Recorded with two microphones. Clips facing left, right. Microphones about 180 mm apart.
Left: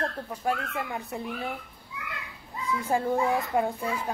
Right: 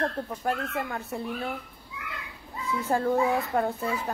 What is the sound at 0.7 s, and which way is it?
Speech, 15° left (ahead or behind).